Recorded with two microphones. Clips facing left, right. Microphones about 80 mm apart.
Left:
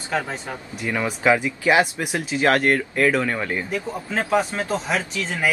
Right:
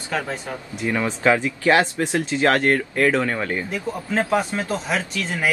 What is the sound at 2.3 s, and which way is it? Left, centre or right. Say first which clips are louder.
Speech: left 1 dB; centre.